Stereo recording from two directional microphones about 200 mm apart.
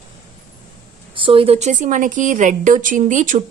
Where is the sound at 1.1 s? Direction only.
25° right (ahead or behind).